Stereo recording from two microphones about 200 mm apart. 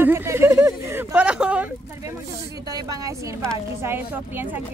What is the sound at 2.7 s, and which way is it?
Speech, 20° right (ahead or behind).